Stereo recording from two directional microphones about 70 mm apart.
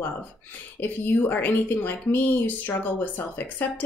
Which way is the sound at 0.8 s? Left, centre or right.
Left.